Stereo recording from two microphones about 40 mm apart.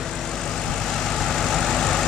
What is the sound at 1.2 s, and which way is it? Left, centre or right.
Vehicle, centre.